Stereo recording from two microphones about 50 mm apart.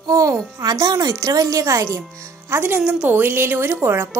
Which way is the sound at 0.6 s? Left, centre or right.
Right.